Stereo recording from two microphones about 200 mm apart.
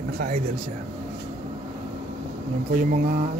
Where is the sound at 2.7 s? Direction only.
45° right (ahead or behind).